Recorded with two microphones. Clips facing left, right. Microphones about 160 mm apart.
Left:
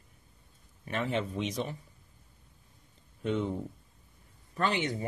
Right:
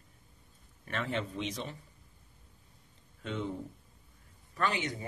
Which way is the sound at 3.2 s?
15° left (ahead or behind).